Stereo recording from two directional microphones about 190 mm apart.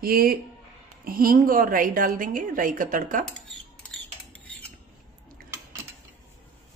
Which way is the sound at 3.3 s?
5° left (ahead or behind).